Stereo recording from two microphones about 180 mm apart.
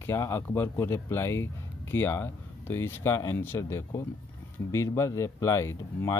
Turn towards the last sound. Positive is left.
turn(degrees=15)  # may be behind; listen again after turning